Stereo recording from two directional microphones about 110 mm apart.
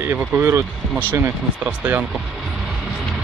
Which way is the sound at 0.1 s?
20° right (ahead or behind).